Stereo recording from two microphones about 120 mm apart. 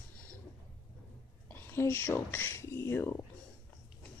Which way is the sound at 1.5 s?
20° left (ahead or behind).